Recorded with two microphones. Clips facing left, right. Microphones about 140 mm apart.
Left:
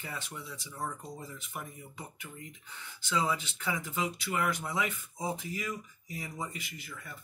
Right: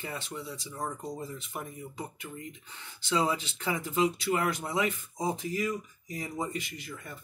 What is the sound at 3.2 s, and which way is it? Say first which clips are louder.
Speech: right 2 dB; 35° right (ahead or behind).